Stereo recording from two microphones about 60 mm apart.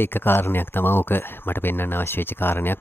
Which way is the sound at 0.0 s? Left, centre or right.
Left.